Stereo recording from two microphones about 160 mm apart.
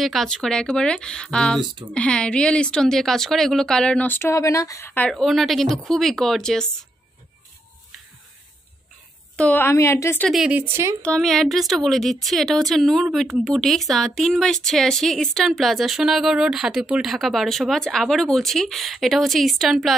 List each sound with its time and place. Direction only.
0.0 s a woman's voice: centre (ahead or behind)
5.1 s a woman's voice: centre (ahead or behind)
9.4 s a woman's voice: 10° left (ahead or behind)
10.2 s speech: centre (ahead or behind)
11.0 s a woman's voice: 5° left (ahead or behind)